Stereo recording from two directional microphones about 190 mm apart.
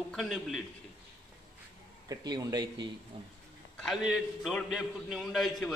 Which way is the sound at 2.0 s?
20° right (ahead or behind).